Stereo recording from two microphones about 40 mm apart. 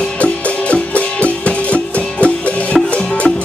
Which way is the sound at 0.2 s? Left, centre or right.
Left.